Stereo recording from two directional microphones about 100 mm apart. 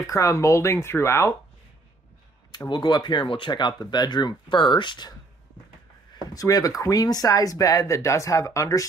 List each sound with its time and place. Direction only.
0.1 s speech: 30° left (ahead or behind)
2.5 s speech: 40° left (ahead or behind)
6.2 s speech: 35° left (ahead or behind)